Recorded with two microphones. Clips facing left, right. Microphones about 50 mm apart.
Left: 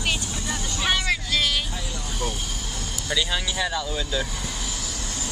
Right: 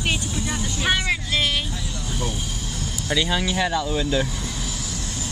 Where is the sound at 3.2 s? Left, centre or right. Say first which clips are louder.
Right 4 dB; centre.